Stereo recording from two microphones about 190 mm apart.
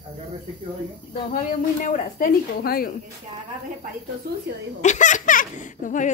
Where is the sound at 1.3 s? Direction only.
45° left (ahead or behind).